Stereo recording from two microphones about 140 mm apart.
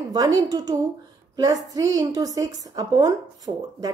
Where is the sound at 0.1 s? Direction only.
25° right (ahead or behind).